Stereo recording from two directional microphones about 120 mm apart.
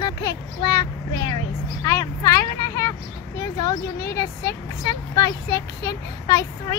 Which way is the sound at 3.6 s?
30° left (ahead or behind).